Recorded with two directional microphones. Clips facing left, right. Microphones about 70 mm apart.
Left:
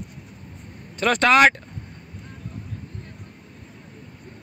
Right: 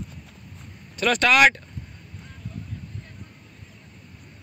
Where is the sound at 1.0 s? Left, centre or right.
Left.